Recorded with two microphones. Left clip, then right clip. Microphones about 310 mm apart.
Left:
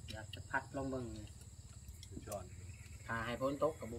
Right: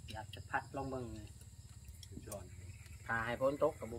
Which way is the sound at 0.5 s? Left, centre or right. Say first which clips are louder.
Even; centre.